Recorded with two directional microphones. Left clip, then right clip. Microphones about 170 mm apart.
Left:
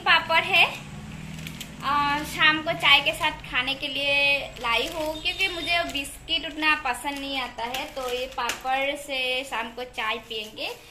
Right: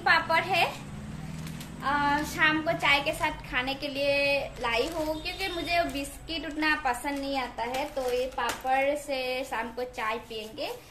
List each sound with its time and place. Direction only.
0.0 s a sound: 10° right (ahead or behind)
1.8 s a woman's voice: 10° right (ahead or behind)
8.6 s a woman's voice: 10° right (ahead or behind)